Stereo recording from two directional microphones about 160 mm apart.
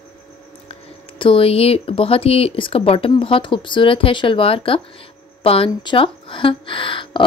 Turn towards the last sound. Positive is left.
turn(degrees=30)  # may be behind; listen again after turning